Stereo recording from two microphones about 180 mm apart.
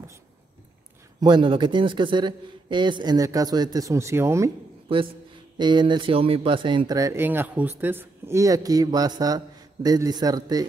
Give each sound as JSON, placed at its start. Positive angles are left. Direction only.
{"t": 1.2, "sound": "speech", "side_deg": -25}
{"t": 5.6, "sound": "speech", "side_deg": -25}